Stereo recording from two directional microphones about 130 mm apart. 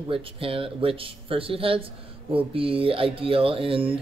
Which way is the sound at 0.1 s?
45° right (ahead or behind).